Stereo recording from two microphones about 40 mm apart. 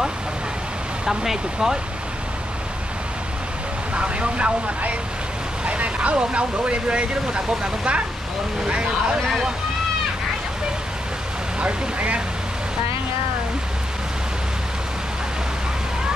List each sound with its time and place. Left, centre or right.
1.0 s speech: centre
3.9 s speech: right
11.6 s speech: right